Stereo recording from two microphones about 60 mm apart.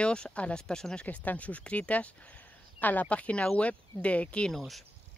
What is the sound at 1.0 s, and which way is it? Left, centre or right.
Speech, left.